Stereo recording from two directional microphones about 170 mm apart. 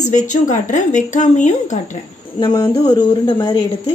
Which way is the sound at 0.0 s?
45° left (ahead or behind).